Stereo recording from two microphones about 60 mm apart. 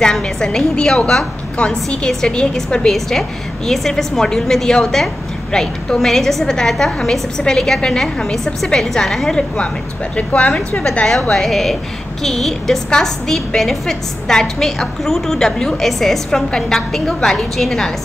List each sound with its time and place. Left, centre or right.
0.0 s a woman's voice: centre
10.1 s speech: left
11.1 s a woman's voice: centre